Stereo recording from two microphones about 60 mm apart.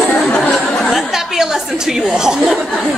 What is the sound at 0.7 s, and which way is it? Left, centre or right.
Speech, centre.